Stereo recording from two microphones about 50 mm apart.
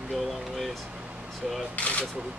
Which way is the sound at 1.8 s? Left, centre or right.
Left.